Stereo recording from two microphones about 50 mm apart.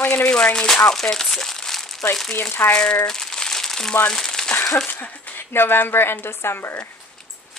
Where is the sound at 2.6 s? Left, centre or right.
Left.